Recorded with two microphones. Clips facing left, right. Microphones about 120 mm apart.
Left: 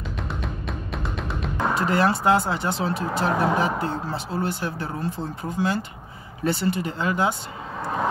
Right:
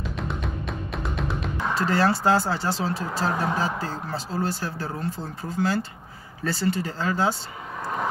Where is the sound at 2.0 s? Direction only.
30° right (ahead or behind).